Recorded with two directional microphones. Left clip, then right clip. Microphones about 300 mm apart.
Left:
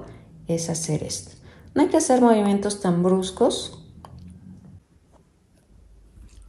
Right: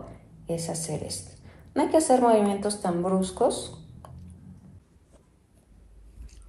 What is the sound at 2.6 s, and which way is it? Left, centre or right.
Speech, left.